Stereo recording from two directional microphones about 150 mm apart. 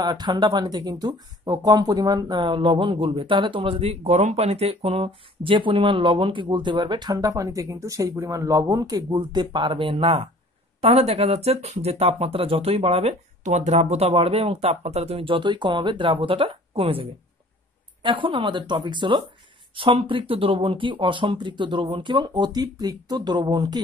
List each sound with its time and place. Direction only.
0.0 s speech: 30° right (ahead or behind)